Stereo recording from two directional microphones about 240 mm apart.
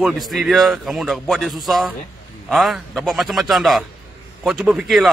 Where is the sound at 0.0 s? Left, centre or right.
Centre.